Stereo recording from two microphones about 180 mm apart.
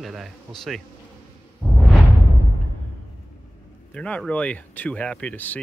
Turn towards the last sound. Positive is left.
turn(degrees=10)  # may be behind; listen again after turning